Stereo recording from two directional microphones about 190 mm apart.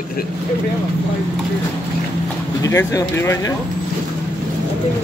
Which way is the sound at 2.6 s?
15° left (ahead or behind).